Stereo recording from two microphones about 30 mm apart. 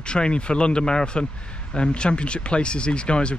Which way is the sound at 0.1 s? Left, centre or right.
Left.